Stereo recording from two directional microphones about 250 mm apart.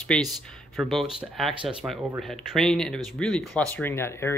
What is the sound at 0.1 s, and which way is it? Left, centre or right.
Speech, centre.